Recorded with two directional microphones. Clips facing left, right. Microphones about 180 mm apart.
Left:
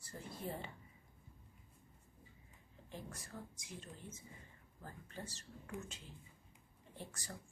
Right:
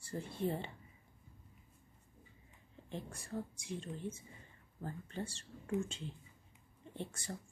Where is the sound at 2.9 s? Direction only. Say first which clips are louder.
Right 7 dB; 30° right (ahead or behind).